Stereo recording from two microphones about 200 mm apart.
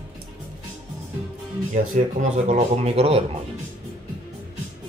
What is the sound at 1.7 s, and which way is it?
Speech, 40° right (ahead or behind).